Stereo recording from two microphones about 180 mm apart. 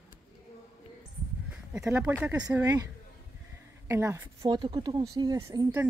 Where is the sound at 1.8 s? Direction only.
15° right (ahead or behind).